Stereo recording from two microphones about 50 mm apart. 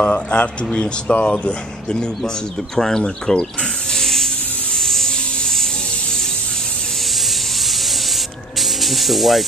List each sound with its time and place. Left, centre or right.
0.0 s speech: left; by 3.4 s centre
3.9 s hiss: centre
4.7 s a sound: centre
8.5 s spray: centre